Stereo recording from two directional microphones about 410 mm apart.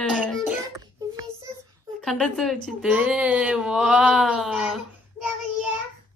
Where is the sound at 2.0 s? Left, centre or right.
Centre.